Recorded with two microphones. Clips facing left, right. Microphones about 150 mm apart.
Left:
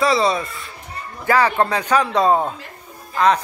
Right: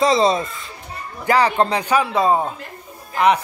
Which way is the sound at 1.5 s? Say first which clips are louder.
Right 1 dB; 20° right (ahead or behind).